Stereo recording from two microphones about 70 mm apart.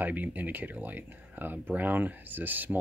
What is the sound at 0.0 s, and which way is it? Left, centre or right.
Speech, right.